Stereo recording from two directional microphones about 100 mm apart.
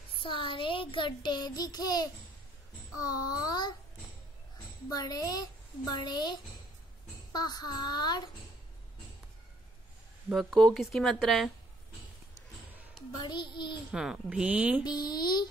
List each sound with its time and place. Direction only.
0.2 s a child's voice: 55° left (ahead or behind)
4.8 s a woman's voice: 40° left (ahead or behind)
10.3 s speech: 5° left (ahead or behind)
13.1 s a child's voice: 45° left (ahead or behind)
13.9 s a woman's voice: 5° right (ahead or behind)
14.8 s a child's voice: 45° left (ahead or behind)